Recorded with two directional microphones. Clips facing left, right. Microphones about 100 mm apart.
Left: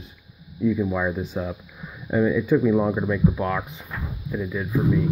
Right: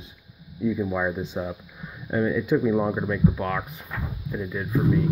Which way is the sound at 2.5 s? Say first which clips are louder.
Left 2 dB; 10° right (ahead or behind).